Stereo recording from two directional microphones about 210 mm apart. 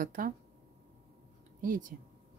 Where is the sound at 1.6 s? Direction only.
40° right (ahead or behind).